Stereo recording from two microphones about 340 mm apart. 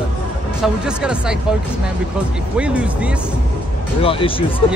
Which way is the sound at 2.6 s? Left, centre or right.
Centre.